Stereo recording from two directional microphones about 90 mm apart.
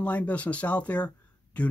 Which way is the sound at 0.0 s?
15° left (ahead or behind).